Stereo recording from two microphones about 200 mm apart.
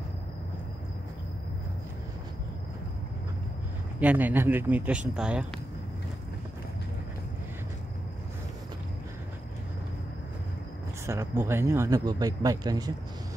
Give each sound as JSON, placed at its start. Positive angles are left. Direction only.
{"t": 4.0, "sound": "speech", "side_deg": -10}
{"t": 11.1, "sound": "speech", "side_deg": -15}